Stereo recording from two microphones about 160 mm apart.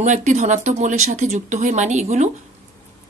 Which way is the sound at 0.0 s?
50° right (ahead or behind).